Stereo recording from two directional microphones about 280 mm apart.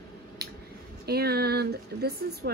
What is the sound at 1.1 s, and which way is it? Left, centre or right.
Speech, right.